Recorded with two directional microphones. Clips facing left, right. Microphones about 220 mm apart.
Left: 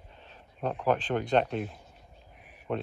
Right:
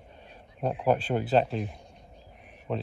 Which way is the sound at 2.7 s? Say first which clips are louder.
Even; centre (ahead or behind).